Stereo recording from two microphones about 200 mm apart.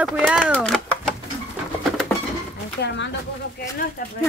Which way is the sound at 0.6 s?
5° left (ahead or behind).